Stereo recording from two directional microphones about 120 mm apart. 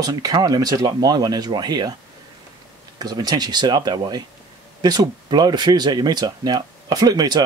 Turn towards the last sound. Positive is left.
turn(degrees=-35)  # may be behind; listen again after turning